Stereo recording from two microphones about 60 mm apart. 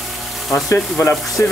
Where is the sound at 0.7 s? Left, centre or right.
Left.